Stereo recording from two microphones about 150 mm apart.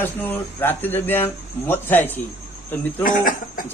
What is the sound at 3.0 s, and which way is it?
Speech, 70° left (ahead or behind).